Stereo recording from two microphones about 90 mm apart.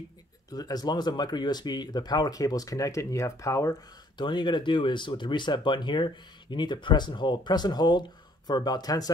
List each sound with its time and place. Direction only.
0.5 s speech: 45° left (ahead or behind)
4.2 s speech: 60° left (ahead or behind)